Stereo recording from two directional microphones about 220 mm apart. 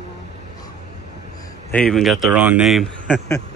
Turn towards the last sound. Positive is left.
turn(degrees=0)  # may be behind; listen again after turning